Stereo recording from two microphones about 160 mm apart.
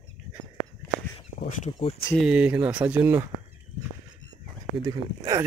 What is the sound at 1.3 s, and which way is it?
Speech, 45° left (ahead or behind).